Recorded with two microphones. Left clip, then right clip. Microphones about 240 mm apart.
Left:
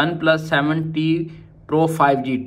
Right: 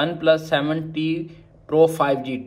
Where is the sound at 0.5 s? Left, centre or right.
Centre.